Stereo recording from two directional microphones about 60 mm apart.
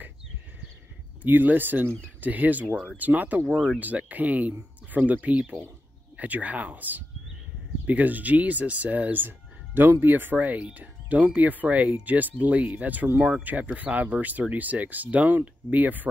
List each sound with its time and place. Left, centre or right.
1.2 s speech: right